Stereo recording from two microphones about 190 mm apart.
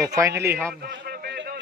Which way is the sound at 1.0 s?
55° right (ahead or behind).